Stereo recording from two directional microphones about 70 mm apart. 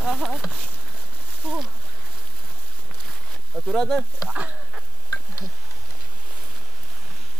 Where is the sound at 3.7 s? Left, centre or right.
Centre.